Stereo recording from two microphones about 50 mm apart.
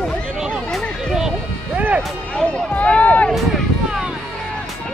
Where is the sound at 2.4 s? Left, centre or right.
Left.